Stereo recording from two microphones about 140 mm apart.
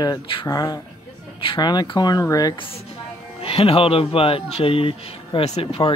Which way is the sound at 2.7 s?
45° left (ahead or behind).